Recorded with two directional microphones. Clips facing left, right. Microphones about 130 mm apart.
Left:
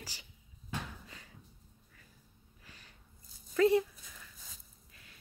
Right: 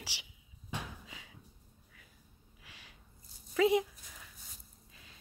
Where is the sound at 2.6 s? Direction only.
90° right.